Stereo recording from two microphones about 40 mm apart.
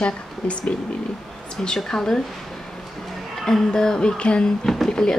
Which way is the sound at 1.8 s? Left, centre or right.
Centre.